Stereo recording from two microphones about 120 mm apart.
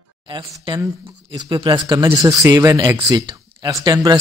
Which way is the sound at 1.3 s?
40° right (ahead or behind).